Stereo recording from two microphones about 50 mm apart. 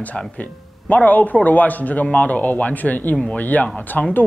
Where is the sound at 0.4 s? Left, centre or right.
Left.